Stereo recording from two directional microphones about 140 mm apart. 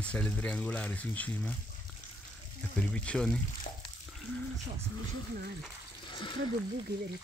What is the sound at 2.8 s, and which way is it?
Speech, 10° left (ahead or behind).